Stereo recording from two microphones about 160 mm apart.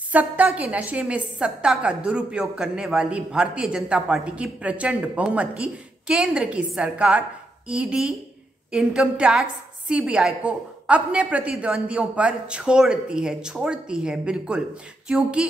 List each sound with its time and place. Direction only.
0.1 s a man's voice: 10° right (ahead or behind)